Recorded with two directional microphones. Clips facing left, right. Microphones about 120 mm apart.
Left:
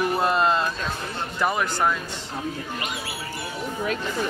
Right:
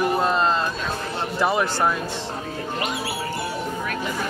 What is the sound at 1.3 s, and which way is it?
Speech, 10° right (ahead or behind).